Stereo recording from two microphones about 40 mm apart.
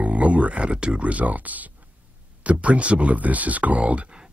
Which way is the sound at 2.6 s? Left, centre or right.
Right.